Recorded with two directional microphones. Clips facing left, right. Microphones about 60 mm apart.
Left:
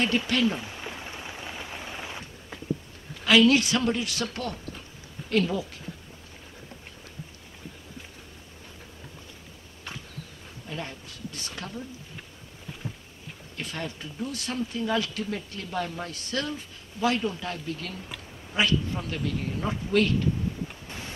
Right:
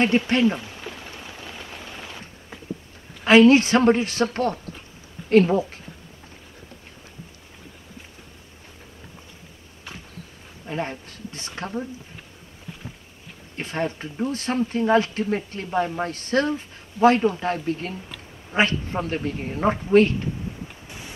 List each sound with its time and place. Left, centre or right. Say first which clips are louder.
0.3 s speech: right 5 dB; right
0.7 s a sound: right 1 dB; centre
3.3 s speech: right 6 dB; right
10.7 s a sound: right 8 dB; right
11.4 s speech: right 9 dB; right
13.6 s speech: right 8 dB; right
20.8 s wind noise: even; centre